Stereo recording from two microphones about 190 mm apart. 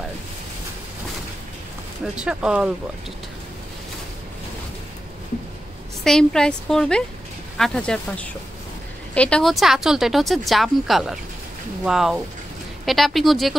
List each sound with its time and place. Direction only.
2.1 s speech: 5° right (ahead or behind)
6.0 s speech: 5° left (ahead or behind)